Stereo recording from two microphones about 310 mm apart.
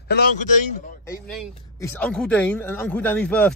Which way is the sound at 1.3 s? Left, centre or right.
Centre.